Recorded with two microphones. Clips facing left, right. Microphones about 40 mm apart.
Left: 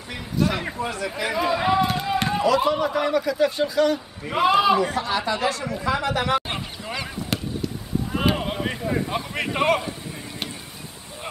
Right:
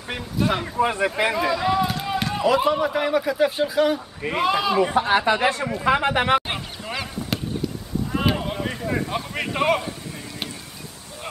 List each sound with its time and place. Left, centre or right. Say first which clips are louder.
0.4 s a sound: even; centre
0.7 s speech: right 6 dB; right
1.3 s speech: even; centre
1.8 s a sound: left 1 dB; centre
2.4 s a man's voice: right 2 dB; centre
4.4 s a man's voice: left 4 dB; centre
4.7 s speech: right 3 dB; right
5.0 s speech: right 4 dB; right
6.5 s goose: right 1 dB; centre
8.1 s a sound: even; centre
9.0 s speech: even; centre